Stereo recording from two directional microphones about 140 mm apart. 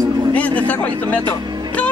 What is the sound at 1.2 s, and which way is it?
Speech, 30° right (ahead or behind).